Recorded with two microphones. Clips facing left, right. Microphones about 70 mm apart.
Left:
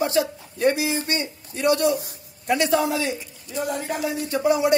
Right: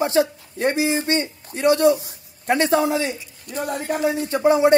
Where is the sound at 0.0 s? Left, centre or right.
Right.